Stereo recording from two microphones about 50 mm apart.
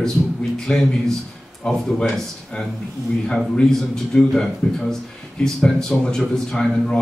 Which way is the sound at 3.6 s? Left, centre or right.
Centre.